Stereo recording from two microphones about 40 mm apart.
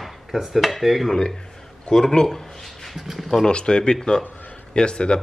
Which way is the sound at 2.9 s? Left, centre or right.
Centre.